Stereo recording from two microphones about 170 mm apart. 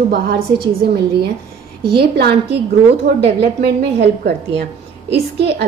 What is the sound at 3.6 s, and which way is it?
A woman's voice, 75° right (ahead or behind).